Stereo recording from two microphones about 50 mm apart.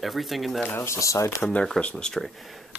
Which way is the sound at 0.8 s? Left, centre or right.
Left.